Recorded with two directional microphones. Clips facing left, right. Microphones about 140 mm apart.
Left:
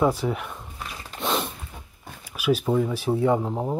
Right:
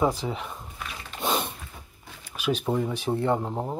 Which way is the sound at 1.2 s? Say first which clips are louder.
Left 1 dB; centre (ahead or behind).